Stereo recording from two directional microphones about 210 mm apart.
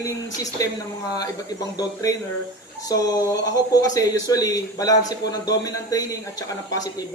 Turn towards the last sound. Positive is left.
turn(degrees=15)  # may be behind; listen again after turning